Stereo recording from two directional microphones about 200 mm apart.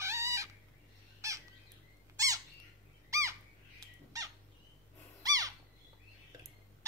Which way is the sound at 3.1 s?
15° right (ahead or behind).